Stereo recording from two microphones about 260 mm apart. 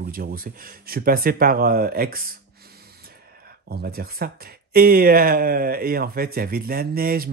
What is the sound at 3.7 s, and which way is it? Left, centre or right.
Speech, right.